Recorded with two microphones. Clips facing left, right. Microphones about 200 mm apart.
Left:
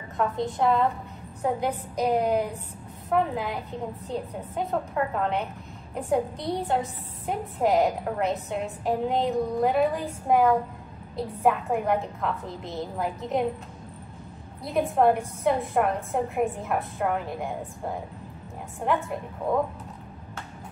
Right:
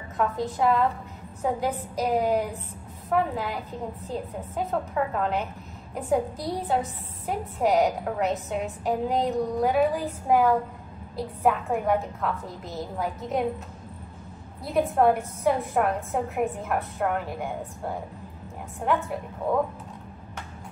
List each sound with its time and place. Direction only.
0.2 s a woman's voice: centre (ahead or behind)
14.6 s a woman's voice: centre (ahead or behind)
18.9 s a woman's voice: centre (ahead or behind)